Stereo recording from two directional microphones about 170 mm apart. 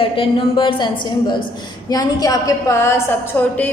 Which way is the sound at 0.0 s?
30° left (ahead or behind).